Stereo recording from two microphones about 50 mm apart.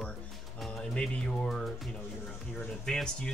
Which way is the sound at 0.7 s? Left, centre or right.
Centre.